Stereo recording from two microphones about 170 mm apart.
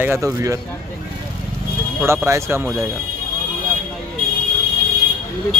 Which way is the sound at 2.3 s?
15° right (ahead or behind).